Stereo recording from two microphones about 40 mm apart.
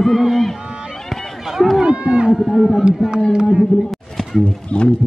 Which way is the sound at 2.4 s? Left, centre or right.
Centre.